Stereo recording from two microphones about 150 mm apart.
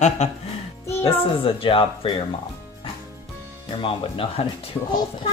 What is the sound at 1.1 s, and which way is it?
Speech, 35° left (ahead or behind).